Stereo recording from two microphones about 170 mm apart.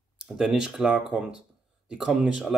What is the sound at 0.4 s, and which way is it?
Speech, 5° right (ahead or behind).